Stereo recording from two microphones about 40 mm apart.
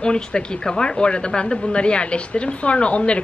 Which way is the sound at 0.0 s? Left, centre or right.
Left.